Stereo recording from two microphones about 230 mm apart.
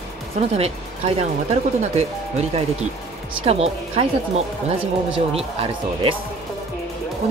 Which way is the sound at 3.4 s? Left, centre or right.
Right.